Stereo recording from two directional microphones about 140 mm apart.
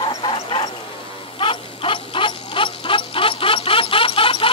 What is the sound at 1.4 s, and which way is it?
Dog, 40° left (ahead or behind).